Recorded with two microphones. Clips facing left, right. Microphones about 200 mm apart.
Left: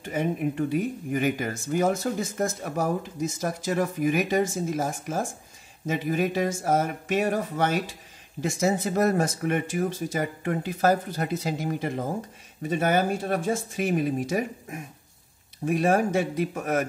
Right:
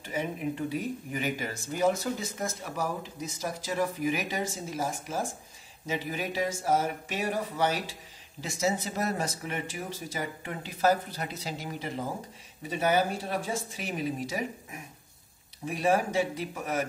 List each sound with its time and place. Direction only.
0.0 s speech: 50° left (ahead or behind)